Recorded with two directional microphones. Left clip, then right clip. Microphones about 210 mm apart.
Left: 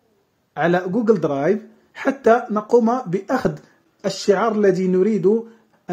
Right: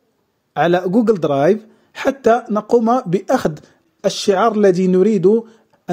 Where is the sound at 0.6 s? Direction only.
40° right (ahead or behind).